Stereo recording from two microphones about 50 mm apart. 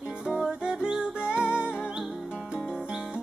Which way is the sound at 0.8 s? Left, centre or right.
Centre.